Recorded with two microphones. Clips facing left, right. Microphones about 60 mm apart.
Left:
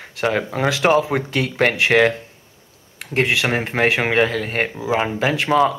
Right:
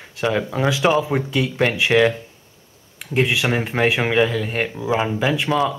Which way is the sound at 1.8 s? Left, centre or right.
Left.